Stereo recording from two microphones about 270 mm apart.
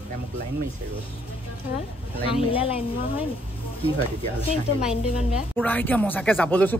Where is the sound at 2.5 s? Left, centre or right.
Left.